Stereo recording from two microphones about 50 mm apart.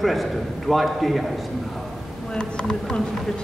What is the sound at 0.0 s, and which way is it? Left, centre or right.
A woman's voice, centre.